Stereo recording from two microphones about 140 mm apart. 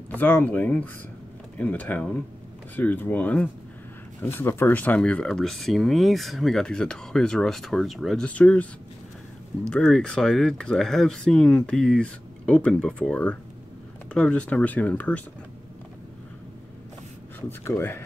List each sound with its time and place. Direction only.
0.1 s speech: 10° left (ahead or behind)
9.7 s speech: 5° left (ahead or behind)
17.4 s speech: 15° left (ahead or behind)